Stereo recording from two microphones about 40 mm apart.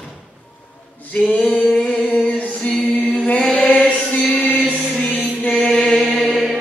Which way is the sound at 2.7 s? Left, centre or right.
Centre.